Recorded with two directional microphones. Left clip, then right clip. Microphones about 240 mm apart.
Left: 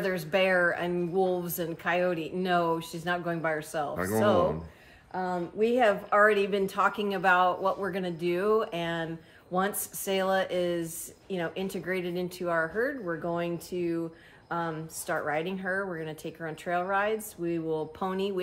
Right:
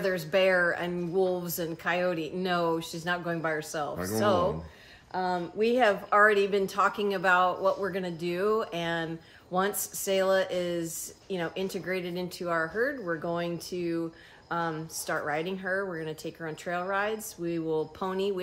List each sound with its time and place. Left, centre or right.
0.0 s a woman's voice: centre
3.9 s speech: centre
5.1 s a woman's voice: centre